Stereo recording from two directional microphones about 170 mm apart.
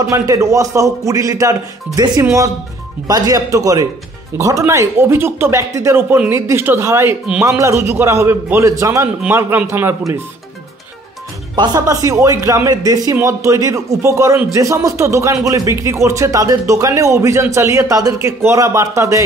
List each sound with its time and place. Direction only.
0.0 s a man's voice: 20° right (ahead or behind)
11.5 s speech: 25° right (ahead or behind)